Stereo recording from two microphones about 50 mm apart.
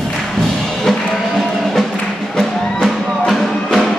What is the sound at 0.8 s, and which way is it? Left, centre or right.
Music, centre.